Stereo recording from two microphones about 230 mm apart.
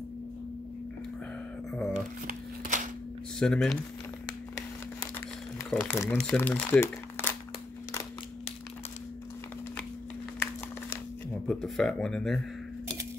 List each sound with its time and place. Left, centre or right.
1.7 s shuffling cards: centre
2.0 s shuffling cards: right
3.3 s speech: centre
5.7 s speech: centre
11.4 s speech: centre